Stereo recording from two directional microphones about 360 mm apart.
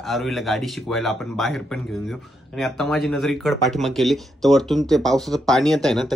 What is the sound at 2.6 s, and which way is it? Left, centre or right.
Speech, centre.